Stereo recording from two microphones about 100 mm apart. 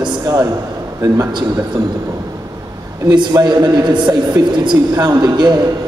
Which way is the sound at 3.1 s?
45° right (ahead or behind).